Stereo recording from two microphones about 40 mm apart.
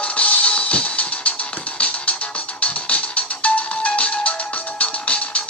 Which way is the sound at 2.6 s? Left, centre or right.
Left.